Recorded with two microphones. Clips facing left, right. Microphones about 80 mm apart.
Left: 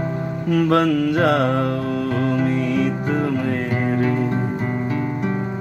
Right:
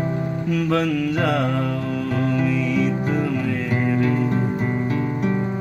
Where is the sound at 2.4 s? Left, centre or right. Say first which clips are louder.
Left 1 dB; left.